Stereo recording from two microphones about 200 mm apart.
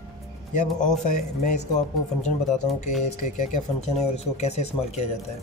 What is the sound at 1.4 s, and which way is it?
Speech, 40° left (ahead or behind).